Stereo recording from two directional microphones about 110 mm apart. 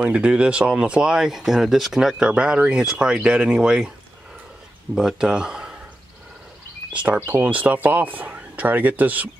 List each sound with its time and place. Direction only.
0.0 s speech: 10° right (ahead or behind)
4.9 s speech: 5° right (ahead or behind)
6.9 s speech: 10° right (ahead or behind)